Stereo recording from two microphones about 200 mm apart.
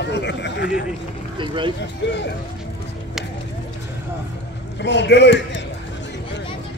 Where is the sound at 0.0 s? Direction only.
60° left (ahead or behind).